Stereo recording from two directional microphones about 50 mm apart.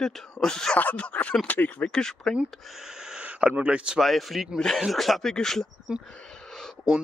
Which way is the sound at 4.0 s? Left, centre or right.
Centre.